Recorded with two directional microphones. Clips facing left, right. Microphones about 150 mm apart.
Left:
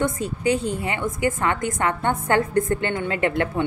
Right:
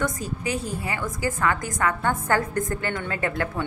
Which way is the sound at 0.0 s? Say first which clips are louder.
Left 5 dB; 30° left (ahead or behind).